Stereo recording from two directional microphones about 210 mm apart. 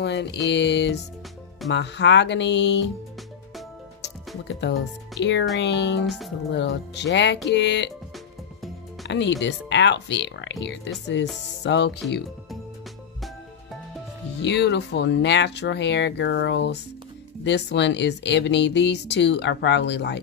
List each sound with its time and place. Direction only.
0.0 s speech: 55° left (ahead or behind)
4.5 s speech: 55° left (ahead or behind)
6.0 s speech: centre (ahead or behind)
6.5 s speech: 55° left (ahead or behind)
9.0 s speech: 55° left (ahead or behind)
14.4 s speech: 55° left (ahead or behind)